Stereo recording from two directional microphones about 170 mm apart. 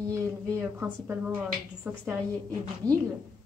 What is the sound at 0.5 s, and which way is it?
A woman's voice, 10° right (ahead or behind).